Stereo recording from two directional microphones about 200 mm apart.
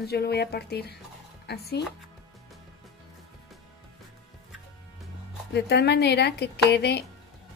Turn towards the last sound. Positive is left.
turn(degrees=55)  # may be behind; listen again after turning